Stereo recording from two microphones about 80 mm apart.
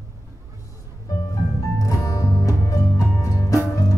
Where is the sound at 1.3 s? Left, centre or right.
Left.